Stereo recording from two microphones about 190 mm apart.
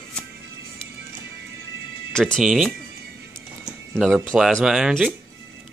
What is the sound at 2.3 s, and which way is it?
Speech, centre (ahead or behind).